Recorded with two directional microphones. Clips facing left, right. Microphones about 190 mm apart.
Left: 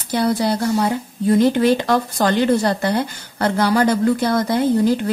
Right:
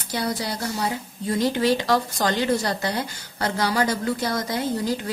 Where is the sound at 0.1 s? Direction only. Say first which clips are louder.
Left 9 dB; 55° left (ahead or behind).